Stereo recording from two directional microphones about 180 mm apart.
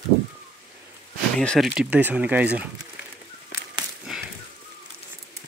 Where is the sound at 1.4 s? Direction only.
Centre (ahead or behind).